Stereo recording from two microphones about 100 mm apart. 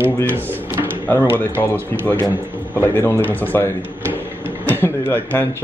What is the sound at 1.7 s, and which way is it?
Speech, 20° left (ahead or behind).